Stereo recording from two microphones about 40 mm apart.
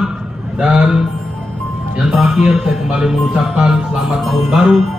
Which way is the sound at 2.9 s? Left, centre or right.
Centre.